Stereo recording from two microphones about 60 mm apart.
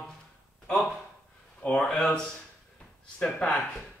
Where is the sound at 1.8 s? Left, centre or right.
Centre.